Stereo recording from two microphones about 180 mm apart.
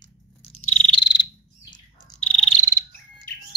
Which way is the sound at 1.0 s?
25° left (ahead or behind).